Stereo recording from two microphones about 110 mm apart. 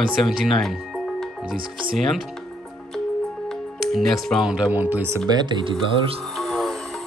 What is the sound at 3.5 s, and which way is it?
Speech, centre (ahead or behind).